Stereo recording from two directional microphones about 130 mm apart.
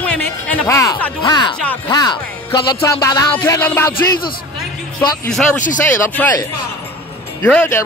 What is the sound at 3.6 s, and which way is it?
Speech, 15° left (ahead or behind).